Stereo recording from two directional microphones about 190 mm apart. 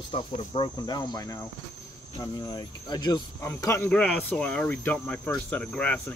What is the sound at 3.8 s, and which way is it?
Speech, 5° left (ahead or behind).